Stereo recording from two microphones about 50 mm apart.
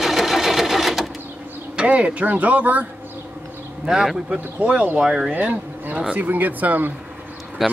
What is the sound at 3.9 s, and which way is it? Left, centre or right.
Speech, centre.